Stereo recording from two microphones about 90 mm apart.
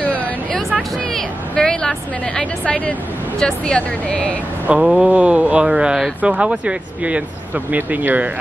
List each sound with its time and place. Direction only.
0.0 s vehicle: 15° left (ahead or behind)
1.5 s speech: 10° left (ahead or behind)
4.6 s speech: 5° right (ahead or behind)